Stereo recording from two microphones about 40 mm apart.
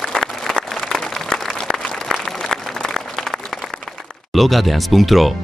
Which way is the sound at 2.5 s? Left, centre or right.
Centre.